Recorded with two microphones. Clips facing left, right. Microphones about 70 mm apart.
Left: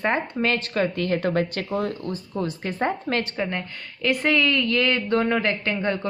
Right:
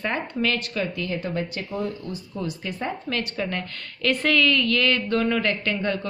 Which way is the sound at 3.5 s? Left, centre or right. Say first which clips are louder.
Even; centre.